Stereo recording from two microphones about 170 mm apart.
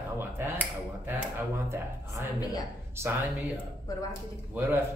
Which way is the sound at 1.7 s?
15° right (ahead or behind).